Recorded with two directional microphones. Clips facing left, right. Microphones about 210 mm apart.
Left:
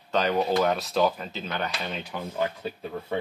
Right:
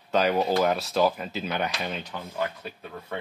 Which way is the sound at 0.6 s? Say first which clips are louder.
Even; centre (ahead or behind).